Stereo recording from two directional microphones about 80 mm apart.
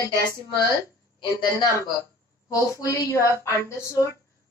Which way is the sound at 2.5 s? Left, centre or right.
Left.